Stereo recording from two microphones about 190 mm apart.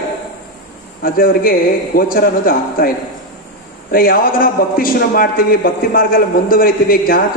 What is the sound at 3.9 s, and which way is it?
A man's voice, 50° left (ahead or behind).